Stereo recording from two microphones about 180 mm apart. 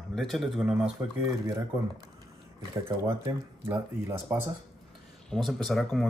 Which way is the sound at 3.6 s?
25° right (ahead or behind).